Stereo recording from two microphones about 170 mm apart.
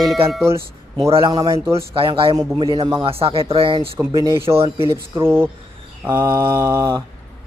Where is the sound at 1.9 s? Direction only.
30° right (ahead or behind).